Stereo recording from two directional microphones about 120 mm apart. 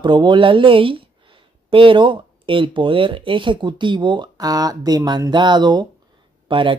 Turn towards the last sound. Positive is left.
turn(degrees=-45)  # may be behind; listen again after turning